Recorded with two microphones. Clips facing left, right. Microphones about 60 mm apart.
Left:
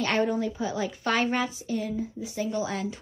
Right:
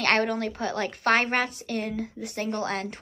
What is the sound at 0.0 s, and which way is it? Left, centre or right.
Speech, right.